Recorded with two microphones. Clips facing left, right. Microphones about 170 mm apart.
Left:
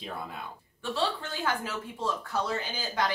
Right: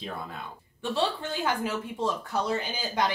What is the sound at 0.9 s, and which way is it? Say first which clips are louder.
Speech: right 3 dB; 15° right (ahead or behind).